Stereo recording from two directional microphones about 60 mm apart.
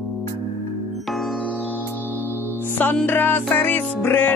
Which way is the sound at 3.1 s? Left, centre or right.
Left.